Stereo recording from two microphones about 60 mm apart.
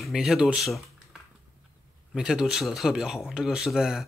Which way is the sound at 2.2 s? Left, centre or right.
Centre.